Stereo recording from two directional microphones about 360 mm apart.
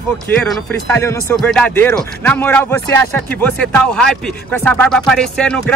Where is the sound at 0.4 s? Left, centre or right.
Centre.